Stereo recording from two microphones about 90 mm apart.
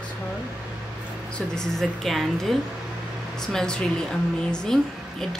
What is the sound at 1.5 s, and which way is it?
Speech, 5° left (ahead or behind).